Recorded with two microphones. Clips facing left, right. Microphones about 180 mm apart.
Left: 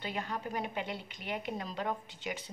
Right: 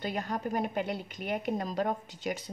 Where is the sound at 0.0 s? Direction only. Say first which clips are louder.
Right 5 dB; 45° right (ahead or behind).